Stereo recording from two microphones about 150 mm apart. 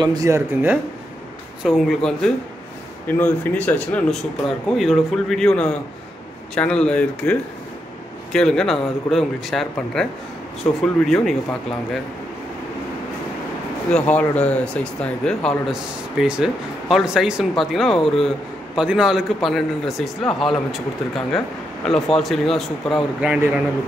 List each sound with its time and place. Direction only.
0.0 s speech: 25° right (ahead or behind)
1.8 s a man's voice: 5° left (ahead or behind)
13.9 s a man's voice: 10° left (ahead or behind); by 23.6 s 10° right (ahead or behind)